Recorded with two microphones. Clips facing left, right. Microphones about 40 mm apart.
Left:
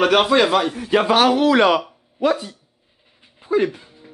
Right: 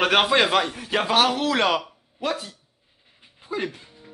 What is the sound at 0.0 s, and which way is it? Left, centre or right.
Speech, centre.